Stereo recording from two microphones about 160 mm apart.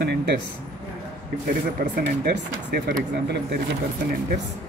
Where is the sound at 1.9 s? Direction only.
90° right.